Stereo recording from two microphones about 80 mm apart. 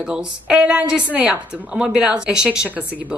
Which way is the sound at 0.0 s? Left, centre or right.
Centre.